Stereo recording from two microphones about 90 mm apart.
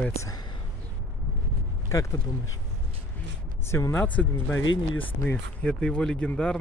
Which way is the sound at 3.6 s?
30° left (ahead or behind).